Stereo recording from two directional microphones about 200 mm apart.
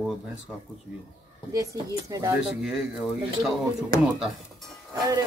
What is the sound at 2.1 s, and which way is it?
Speech, 15° right (ahead or behind).